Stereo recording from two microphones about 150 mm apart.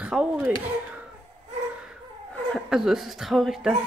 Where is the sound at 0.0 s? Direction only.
5° right (ahead or behind).